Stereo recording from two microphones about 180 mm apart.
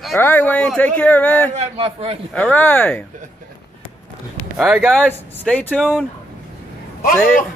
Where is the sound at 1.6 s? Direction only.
30° right (ahead or behind).